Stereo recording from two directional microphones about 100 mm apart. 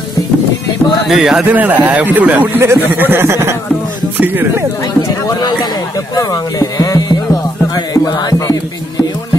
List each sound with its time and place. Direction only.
1.0 s speech: 5° right (ahead or behind)
1.4 s a man's voice: 15° right (ahead or behind)
5.0 s speech: 40° left (ahead or behind)
7.7 s music: 40° left (ahead or behind)